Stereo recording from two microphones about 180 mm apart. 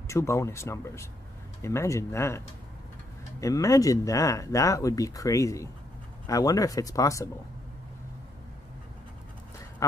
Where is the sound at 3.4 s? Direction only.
20° left (ahead or behind).